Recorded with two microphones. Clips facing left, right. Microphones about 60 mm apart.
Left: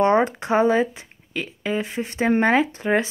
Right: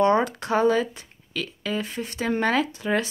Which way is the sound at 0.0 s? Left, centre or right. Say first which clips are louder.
Left 2 dB; left.